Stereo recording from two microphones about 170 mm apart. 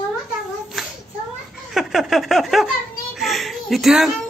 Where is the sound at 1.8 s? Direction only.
Centre (ahead or behind).